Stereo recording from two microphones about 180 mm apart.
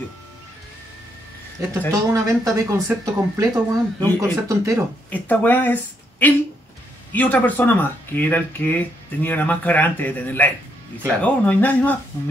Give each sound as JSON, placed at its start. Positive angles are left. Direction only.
{"t": 1.7, "sound": "speech", "side_deg": -20}
{"t": 5.1, "sound": "speech", "side_deg": 10}